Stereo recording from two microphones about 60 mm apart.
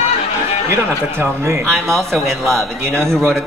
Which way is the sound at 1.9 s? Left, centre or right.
Centre.